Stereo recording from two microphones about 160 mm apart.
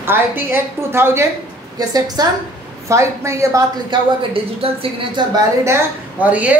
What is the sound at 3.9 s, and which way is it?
Speech, 30° right (ahead or behind).